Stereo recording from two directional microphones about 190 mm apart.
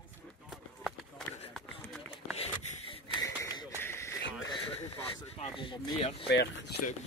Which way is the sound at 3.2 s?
15° left (ahead or behind).